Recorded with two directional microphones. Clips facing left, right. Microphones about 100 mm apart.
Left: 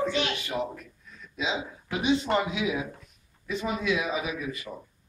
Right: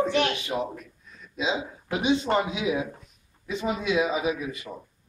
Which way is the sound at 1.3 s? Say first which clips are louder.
Right 3 dB; 20° right (ahead or behind).